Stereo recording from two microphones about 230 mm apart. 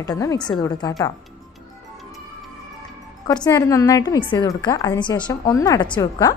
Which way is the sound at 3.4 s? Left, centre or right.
Centre.